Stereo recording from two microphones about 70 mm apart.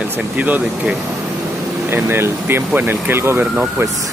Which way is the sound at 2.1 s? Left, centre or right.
Right.